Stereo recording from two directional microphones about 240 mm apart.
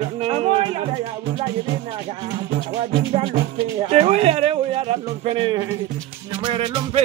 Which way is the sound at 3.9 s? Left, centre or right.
Right.